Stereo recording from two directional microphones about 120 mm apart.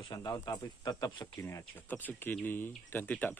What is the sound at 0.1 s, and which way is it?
Speech, 35° left (ahead or behind).